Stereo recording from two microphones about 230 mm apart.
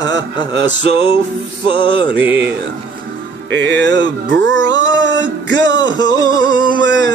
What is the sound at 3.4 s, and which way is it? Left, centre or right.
Mantra, right.